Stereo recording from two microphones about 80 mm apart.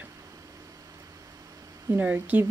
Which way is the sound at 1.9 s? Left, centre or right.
Right.